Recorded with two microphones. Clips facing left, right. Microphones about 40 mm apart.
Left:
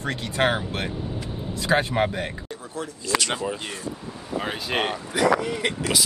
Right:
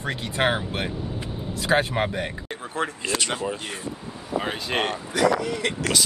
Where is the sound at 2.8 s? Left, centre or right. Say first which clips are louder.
Right 10 dB; right.